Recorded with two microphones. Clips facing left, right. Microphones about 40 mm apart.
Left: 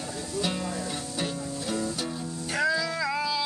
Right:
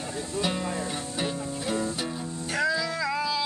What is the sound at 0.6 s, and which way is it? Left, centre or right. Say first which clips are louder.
Music: right 2 dB; right.